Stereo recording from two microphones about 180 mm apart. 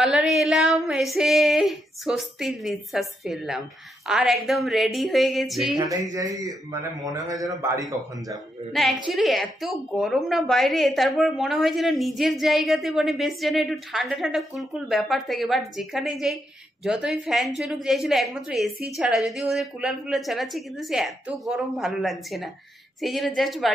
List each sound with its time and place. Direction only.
0.0 s a woman's voice: centre (ahead or behind)
6.1 s a man's voice: 20° right (ahead or behind)
8.8 s a woman's voice: centre (ahead or behind)